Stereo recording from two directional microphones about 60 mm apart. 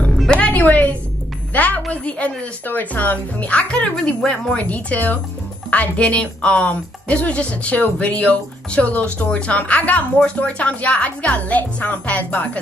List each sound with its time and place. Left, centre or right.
0.4 s a woman's voice: left
4.6 s a woman's voice: left